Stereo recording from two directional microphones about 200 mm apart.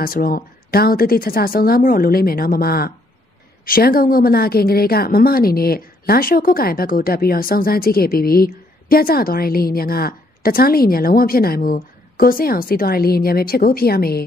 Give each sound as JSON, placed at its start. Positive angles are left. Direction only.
{"t": 0.0, "sound": "a woman's voice", "side_deg": 45}